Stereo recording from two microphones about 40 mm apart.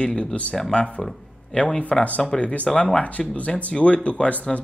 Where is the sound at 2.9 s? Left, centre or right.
Left.